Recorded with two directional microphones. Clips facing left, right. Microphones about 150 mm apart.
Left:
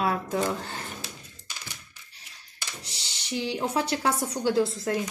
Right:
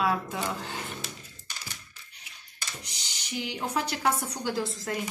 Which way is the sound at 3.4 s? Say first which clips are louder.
Left 3 dB; 30° left (ahead or behind).